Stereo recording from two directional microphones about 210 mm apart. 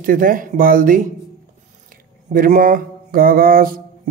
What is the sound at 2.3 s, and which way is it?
Mantra, 40° right (ahead or behind).